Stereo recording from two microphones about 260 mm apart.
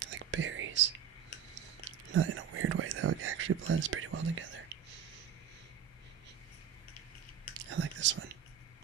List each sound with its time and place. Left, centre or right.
0.0 s whispering: right
2.1 s whispering: right
7.7 s whispering: right